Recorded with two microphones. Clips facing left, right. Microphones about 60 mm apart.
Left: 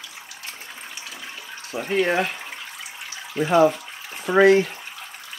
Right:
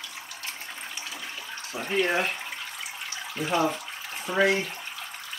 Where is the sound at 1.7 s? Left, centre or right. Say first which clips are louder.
Left 5 dB; centre.